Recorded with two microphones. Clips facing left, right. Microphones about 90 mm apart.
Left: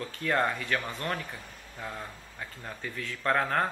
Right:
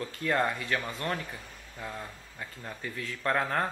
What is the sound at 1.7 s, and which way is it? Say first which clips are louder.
Speech: even; 10° left (ahead or behind).